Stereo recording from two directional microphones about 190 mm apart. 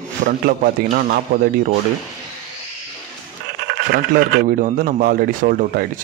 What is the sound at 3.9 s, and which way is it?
Speech, 50° right (ahead or behind).